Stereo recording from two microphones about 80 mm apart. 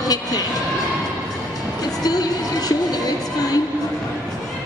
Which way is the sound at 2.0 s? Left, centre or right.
Left.